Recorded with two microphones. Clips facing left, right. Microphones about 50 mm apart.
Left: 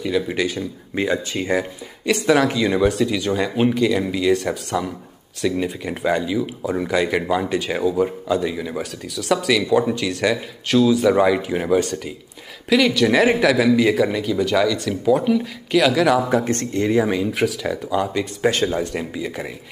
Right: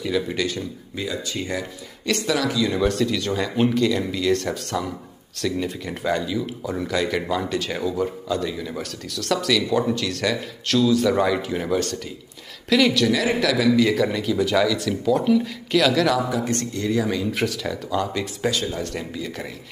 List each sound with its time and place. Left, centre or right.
0.3 s speech: centre
0.9 s speech: left
2.8 s speech: centre
13.1 s speech: left
13.4 s speech: left
16.3 s speech: left
17.3 s speech: centre
18.5 s speech: left
18.8 s speech: centre